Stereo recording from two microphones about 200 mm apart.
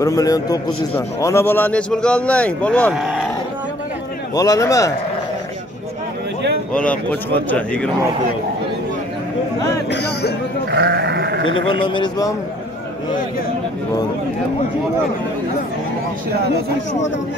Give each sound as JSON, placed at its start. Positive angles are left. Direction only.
{"t": 0.0, "sound": "a man's voice", "side_deg": 15}
{"t": 4.4, "sound": "a man's voice", "side_deg": 15}
{"t": 6.7, "sound": "a man's voice", "side_deg": 5}
{"t": 9.8, "sound": "speech", "side_deg": 55}
{"t": 10.7, "sound": "sheep", "side_deg": -55}
{"t": 11.4, "sound": "a man's voice", "side_deg": 25}